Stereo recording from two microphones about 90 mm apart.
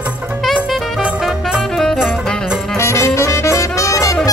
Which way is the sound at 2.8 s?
30° left (ahead or behind).